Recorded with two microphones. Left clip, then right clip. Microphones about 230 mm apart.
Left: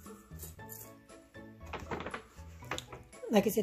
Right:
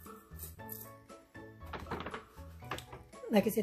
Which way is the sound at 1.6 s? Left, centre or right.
Centre.